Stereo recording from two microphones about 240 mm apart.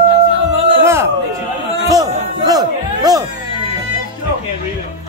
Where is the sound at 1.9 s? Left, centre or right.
Centre.